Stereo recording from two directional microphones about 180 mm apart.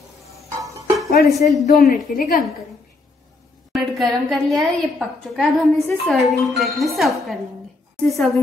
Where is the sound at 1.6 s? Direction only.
50° left (ahead or behind).